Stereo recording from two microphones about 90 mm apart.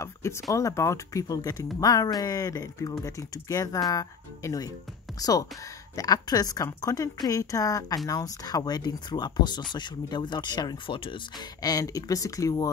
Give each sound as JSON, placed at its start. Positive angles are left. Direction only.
{"t": 0.0, "sound": "a woman's voice", "side_deg": 30}
{"t": 11.6, "sound": "speech", "side_deg": 40}